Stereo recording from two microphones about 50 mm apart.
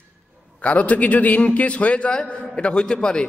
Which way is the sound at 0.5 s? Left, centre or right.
Left.